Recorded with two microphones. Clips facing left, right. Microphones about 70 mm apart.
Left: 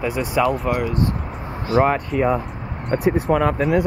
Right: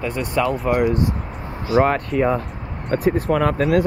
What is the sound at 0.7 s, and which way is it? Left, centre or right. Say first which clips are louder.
Speech: right 4 dB; centre.